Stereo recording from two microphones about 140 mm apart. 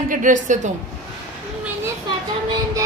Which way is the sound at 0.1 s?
65° right (ahead or behind).